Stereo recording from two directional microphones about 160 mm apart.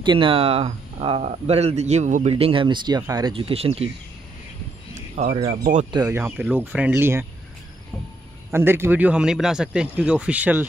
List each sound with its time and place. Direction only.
0.0 s speech: 30° right (ahead or behind)
5.2 s speech: 50° right (ahead or behind)
5.9 s speech: 25° right (ahead or behind)
8.5 s speech: 15° right (ahead or behind)